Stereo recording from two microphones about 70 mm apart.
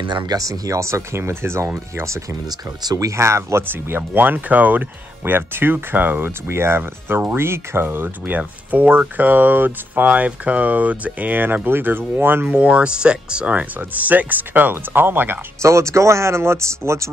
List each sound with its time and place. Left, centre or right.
0.1 s speech: right
0.4 s speech: right
2.8 s speech: right
3.1 s speech: right
12.5 s speech: centre
15.6 s speech: right